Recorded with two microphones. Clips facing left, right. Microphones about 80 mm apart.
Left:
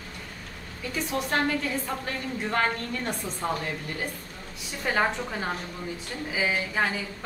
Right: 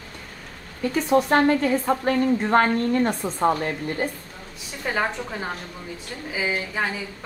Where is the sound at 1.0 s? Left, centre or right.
Right.